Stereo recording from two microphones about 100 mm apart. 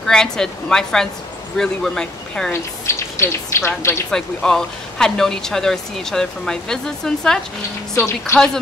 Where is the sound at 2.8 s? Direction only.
25° left (ahead or behind).